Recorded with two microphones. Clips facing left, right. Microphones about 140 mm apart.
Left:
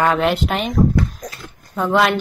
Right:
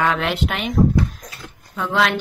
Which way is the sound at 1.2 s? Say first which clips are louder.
Left 5 dB; 40° left (ahead or behind).